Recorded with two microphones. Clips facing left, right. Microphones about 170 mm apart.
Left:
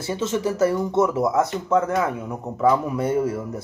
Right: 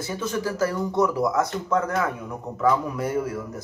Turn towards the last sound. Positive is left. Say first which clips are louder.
# left 4 dB
turn(degrees=25)  # may be behind; listen again after turning